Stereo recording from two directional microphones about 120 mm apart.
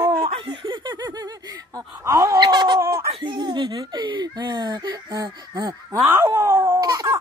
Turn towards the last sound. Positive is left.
turn(degrees=-30)  # may be behind; listen again after turning